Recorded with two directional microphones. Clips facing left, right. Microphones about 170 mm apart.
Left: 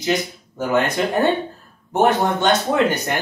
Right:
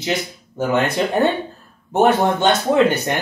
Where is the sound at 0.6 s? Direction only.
25° right (ahead or behind).